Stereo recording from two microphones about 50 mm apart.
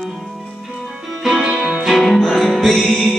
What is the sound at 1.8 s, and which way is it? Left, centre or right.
Music, centre.